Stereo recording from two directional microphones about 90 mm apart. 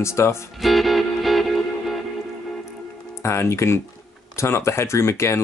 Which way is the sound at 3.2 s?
30° left (ahead or behind).